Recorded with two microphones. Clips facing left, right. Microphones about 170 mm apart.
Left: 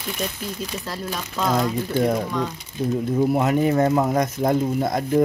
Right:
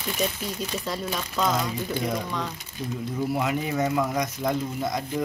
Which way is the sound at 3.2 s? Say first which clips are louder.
Left 7 dB; 50° left (ahead or behind).